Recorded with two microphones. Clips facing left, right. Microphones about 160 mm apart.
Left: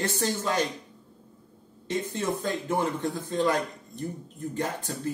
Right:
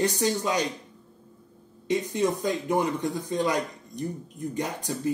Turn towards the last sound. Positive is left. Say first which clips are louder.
# right 2 dB
turn(degrees=-15)  # may be behind; listen again after turning